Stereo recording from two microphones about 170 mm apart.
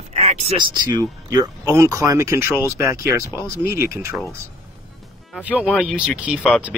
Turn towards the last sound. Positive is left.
turn(degrees=-5)  # may be behind; listen again after turning